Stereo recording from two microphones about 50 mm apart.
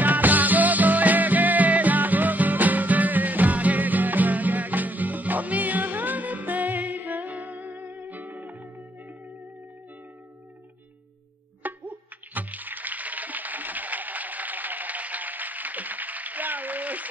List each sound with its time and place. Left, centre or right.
0.0 s music: right
11.6 s music: right